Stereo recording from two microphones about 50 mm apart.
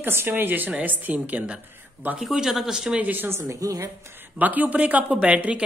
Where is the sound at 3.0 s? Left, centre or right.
Right.